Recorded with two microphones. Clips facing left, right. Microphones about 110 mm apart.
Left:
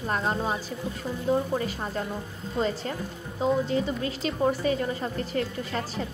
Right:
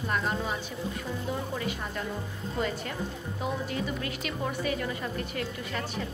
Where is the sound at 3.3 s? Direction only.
25° left (ahead or behind).